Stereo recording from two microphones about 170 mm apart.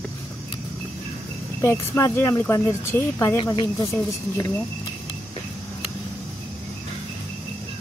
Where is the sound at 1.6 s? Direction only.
15° left (ahead or behind).